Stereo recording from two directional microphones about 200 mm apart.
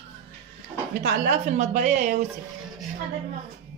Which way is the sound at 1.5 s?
35° right (ahead or behind).